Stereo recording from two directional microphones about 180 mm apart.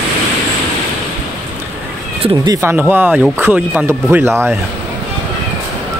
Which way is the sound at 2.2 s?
25° right (ahead or behind).